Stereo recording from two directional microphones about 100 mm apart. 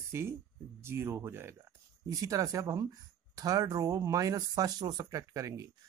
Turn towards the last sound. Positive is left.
turn(degrees=-35)  # may be behind; listen again after turning